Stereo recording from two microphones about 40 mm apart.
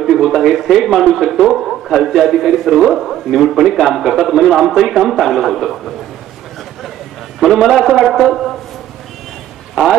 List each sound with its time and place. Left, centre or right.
0.0 s a man's voice: centre
7.3 s a man's voice: centre